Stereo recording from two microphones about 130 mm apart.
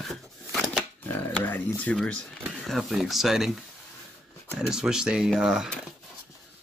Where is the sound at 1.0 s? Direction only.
15° left (ahead or behind).